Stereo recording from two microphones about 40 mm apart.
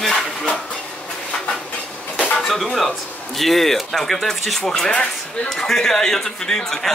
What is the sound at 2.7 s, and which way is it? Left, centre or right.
Speech, centre.